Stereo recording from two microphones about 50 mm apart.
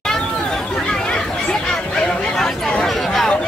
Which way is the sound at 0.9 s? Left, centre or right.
Centre.